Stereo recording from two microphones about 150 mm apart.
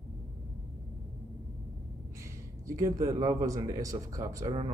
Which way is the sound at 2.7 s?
20° right (ahead or behind).